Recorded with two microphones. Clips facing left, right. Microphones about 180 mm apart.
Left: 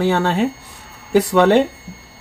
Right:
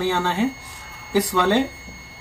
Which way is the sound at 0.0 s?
65° left (ahead or behind).